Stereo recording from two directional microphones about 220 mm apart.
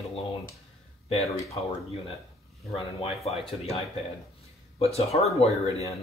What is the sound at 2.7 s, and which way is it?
Speech, 25° left (ahead or behind).